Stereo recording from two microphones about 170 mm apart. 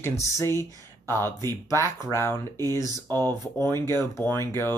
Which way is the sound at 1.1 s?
15° left (ahead or behind).